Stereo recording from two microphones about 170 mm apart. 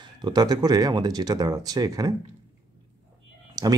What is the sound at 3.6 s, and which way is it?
Clicking, 20° right (ahead or behind).